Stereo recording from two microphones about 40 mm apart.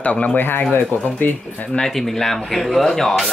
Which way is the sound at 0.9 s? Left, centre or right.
Left.